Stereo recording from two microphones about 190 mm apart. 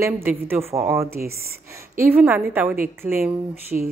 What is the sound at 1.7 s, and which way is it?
A woman's voice, 15° right (ahead or behind).